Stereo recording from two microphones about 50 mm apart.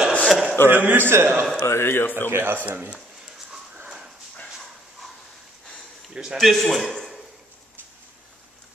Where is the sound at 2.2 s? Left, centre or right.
Right.